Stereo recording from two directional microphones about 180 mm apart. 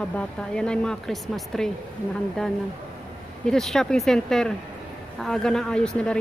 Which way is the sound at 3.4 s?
Centre (ahead or behind).